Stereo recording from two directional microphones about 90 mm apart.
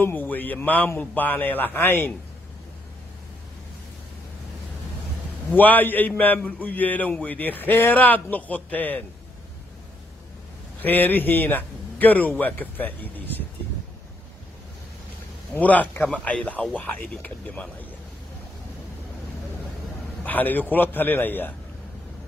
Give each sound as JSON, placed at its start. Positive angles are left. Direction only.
{"t": 0.0, "sound": "a man's voice", "side_deg": 20}
{"t": 5.5, "sound": "a man's voice", "side_deg": 20}
{"t": 10.8, "sound": "a man's voice", "side_deg": 20}
{"t": 15.5, "sound": "speech", "side_deg": 15}
{"t": 20.2, "sound": "a man's voice", "side_deg": 20}